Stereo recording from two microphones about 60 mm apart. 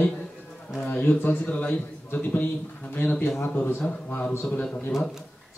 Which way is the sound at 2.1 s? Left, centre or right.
Left.